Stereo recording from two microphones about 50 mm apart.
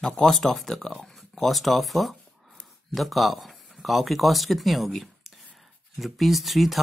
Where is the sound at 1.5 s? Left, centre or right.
Centre.